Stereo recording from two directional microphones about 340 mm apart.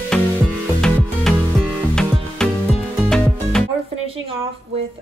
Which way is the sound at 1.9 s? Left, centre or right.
Centre.